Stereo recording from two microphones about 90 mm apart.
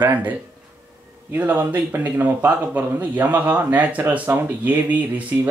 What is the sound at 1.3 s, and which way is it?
Speech, 20° right (ahead or behind).